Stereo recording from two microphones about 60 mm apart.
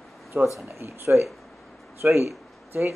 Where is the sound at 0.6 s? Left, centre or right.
Right.